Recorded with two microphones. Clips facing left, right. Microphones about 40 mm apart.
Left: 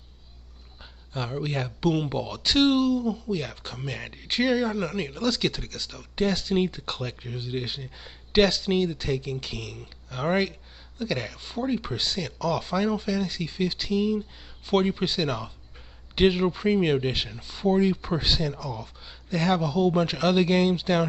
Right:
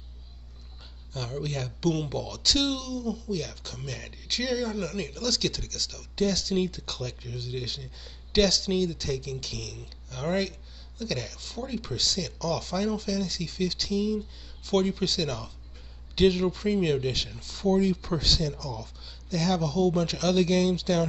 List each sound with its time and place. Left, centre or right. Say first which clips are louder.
1.1 s speech: left 3 dB; left